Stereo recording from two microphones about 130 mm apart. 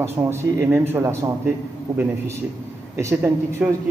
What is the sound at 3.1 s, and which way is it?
Speech, 10° right (ahead or behind).